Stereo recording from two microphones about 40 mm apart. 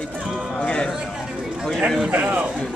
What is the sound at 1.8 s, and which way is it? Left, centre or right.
Speech, centre.